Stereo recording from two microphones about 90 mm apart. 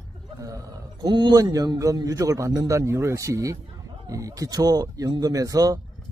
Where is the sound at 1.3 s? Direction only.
40° right (ahead or behind).